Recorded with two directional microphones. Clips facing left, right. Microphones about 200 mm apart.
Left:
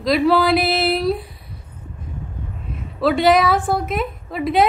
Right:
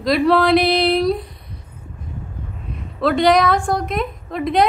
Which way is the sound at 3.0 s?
5° left (ahead or behind).